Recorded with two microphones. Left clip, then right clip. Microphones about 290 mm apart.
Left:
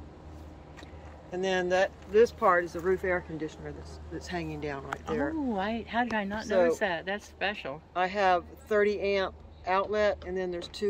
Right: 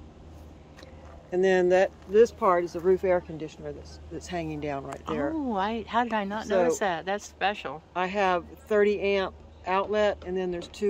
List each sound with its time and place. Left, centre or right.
1.3 s speech: right
5.5 s speech: centre
6.4 s speech: right
6.8 s speech: centre
7.9 s speech: right